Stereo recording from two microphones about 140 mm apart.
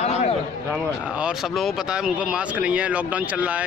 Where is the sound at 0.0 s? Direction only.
50° left (ahead or behind).